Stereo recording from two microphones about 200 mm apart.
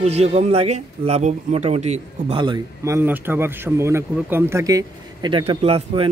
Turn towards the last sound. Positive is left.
turn(degrees=-30)  # may be behind; listen again after turning